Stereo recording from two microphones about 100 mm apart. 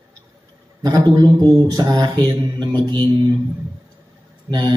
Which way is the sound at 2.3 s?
45° right (ahead or behind).